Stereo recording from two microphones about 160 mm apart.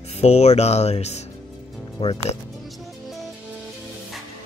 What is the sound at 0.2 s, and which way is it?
Speech, 40° left (ahead or behind).